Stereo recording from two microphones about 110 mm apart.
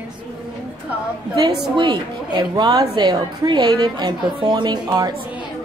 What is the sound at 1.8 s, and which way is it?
A woman's voice, 45° right (ahead or behind).